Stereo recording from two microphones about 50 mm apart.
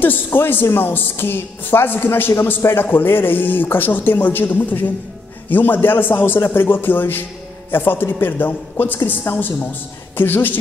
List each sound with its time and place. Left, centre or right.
0.0 s a woman's voice: left